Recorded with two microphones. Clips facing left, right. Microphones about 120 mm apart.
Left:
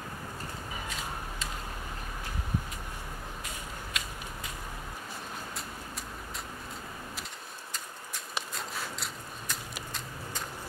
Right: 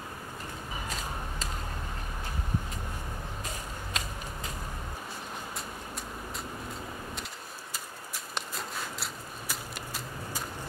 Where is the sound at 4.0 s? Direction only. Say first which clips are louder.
Right 3 dB; 35° right (ahead or behind).